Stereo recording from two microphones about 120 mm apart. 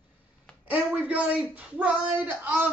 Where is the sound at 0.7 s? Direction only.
10° right (ahead or behind).